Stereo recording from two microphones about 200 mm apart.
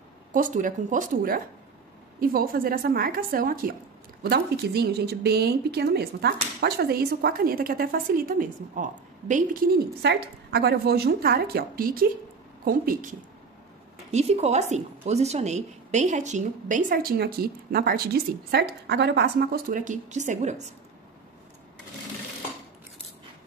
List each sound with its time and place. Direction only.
0.3 s a woman's voice: 40° right (ahead or behind)
14.1 s a woman's voice: 35° right (ahead or behind)